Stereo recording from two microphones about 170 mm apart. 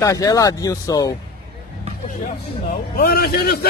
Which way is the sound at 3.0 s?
65° left (ahead or behind).